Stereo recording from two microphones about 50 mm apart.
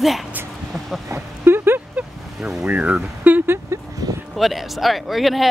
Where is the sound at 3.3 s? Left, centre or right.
Right.